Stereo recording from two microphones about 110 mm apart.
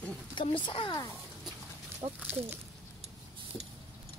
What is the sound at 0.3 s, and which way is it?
Speech, 45° left (ahead or behind).